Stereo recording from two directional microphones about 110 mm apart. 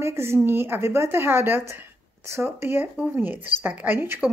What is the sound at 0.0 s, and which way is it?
A woman's voice, 25° right (ahead or behind).